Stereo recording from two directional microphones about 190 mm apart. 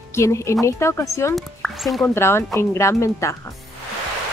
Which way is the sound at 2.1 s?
15° left (ahead or behind).